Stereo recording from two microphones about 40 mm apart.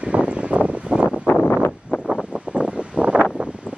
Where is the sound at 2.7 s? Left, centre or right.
Right.